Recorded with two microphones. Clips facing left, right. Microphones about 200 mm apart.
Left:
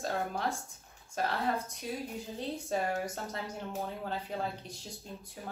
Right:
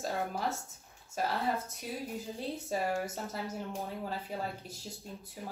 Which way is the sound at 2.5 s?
5° right (ahead or behind).